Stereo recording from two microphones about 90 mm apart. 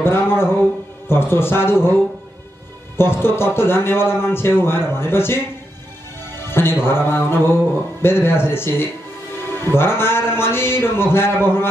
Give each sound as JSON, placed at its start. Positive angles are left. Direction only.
{"t": 0.0, "sound": "a man's voice", "side_deg": 25}
{"t": 3.0, "sound": "a man's voice", "side_deg": 25}
{"t": 6.3, "sound": "music", "side_deg": 25}
{"t": 9.5, "sound": "a man's voice", "side_deg": 25}